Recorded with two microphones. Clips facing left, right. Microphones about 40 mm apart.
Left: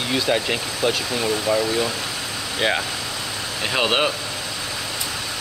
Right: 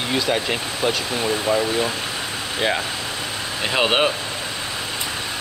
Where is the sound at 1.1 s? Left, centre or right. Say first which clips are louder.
Even; centre.